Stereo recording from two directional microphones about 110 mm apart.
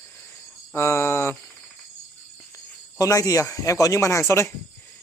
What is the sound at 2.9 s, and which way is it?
Speech, 30° left (ahead or behind).